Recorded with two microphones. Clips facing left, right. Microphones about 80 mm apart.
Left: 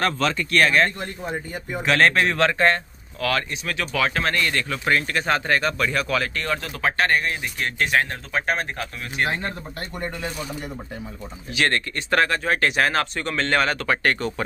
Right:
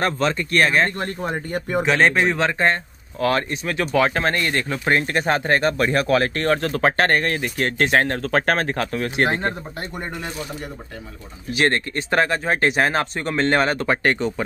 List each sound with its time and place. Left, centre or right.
0.0 s speech: right
0.9 s a man's voice: right
1.9 s a man's voice: centre
3.2 s speech: right
9.2 s speech: right
11.5 s speech: right